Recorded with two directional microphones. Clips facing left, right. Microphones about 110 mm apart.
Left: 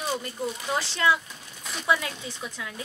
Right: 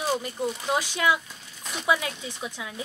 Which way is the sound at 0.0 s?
15° right (ahead or behind).